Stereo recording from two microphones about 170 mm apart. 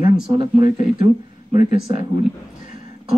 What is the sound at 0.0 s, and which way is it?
Speech, 30° right (ahead or behind).